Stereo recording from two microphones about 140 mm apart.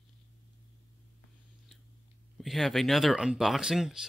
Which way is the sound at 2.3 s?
Centre (ahead or behind).